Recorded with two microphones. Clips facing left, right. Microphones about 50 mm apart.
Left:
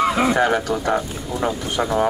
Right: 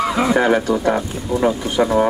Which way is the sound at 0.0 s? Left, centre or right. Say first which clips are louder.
Right 1 dB; centre.